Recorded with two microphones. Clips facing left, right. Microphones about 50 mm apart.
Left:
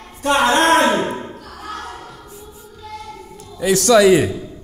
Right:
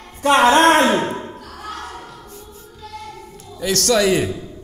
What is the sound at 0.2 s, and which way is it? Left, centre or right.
Singing, right.